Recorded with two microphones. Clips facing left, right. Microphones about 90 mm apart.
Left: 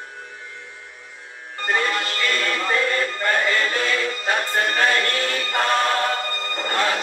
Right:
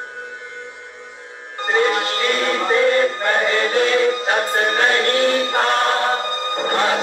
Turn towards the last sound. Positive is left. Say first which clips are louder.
# right 4 dB
turn(degrees=-20)  # may be behind; listen again after turning